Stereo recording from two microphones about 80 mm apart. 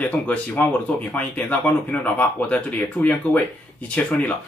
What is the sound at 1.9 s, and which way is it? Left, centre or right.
Speech, centre.